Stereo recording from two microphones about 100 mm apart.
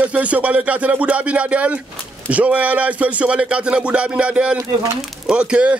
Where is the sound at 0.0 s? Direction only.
15° right (ahead or behind).